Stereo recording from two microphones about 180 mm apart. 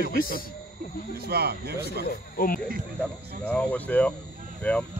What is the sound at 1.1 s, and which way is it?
Speech, 60° right (ahead or behind).